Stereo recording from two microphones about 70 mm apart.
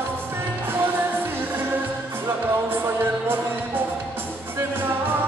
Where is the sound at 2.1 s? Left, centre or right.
Right.